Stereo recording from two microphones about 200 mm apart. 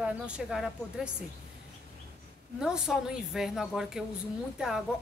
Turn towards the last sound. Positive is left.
turn(degrees=-5)  # may be behind; listen again after turning